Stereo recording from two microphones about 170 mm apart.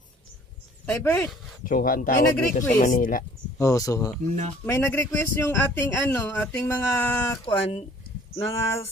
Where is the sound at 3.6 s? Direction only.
20° left (ahead or behind).